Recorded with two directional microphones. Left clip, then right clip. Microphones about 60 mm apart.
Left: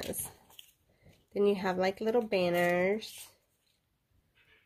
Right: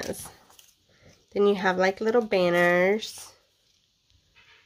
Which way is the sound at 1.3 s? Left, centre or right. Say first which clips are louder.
Right 7 dB; right.